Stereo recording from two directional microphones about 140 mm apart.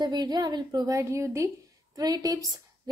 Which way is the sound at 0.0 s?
30° right (ahead or behind).